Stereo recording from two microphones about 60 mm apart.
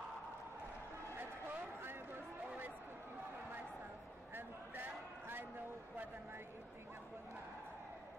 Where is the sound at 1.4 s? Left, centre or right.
Right.